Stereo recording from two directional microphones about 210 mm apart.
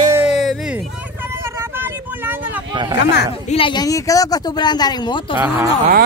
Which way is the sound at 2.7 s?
20° right (ahead or behind).